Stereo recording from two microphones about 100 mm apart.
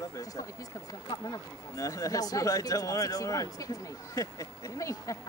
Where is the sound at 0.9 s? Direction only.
35° left (ahead or behind).